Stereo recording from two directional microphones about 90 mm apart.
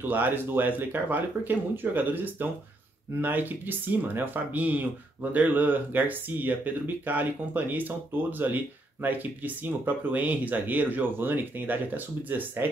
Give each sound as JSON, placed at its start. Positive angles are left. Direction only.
{"t": 0.0, "sound": "speech", "side_deg": -20}